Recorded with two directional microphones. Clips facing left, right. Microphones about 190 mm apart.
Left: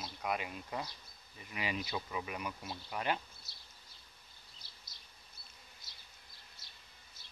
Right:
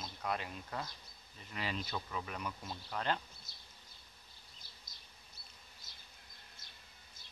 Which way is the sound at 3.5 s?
50° right (ahead or behind).